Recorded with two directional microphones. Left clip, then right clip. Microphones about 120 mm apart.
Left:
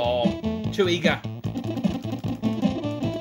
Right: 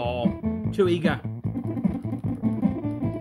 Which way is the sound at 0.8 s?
45° right (ahead or behind).